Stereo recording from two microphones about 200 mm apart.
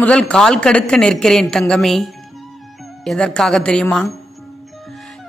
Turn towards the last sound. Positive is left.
turn(degrees=5)  # may be behind; listen again after turning